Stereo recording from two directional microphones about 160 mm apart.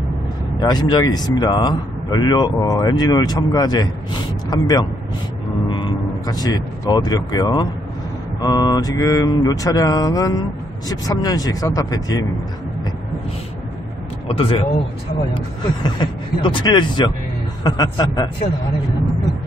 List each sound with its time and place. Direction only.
0.6 s a man's voice: 25° left (ahead or behind)
14.2 s a man's voice: 35° left (ahead or behind)